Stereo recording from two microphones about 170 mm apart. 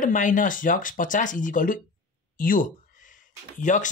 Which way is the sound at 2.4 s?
55° left (ahead or behind).